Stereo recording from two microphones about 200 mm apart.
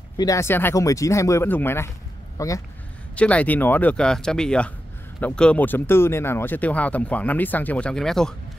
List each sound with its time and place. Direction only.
0.2 s speech: 15° left (ahead or behind)